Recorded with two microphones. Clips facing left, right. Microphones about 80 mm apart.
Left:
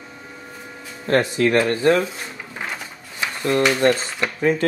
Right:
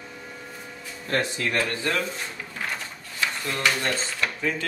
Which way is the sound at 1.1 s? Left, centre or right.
Left.